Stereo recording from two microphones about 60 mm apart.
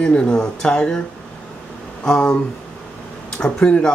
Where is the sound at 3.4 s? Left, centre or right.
Centre.